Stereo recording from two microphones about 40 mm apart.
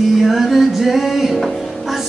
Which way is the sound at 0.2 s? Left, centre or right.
Centre.